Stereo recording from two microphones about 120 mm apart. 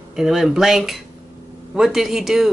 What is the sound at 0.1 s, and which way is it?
Speech, 5° right (ahead or behind).